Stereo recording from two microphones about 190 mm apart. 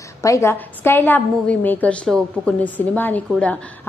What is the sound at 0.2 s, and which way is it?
A woman's voice, 15° left (ahead or behind).